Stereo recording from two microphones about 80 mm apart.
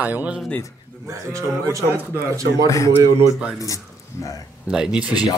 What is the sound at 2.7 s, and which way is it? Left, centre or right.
Speech, left.